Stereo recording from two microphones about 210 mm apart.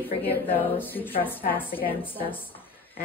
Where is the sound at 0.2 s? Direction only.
10° left (ahead or behind).